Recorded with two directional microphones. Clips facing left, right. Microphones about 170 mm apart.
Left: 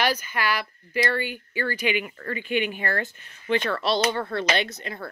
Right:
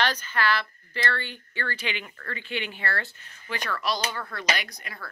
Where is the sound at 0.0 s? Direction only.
10° left (ahead or behind).